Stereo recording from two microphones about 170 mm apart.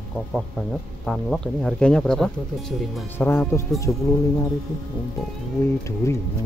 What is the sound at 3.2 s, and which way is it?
Speech, 15° left (ahead or behind).